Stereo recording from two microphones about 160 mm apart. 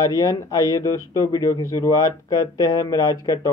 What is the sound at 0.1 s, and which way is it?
Speech, 25° left (ahead or behind).